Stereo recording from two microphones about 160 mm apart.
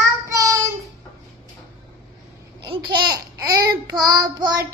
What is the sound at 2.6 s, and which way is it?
Babbling, 30° right (ahead or behind).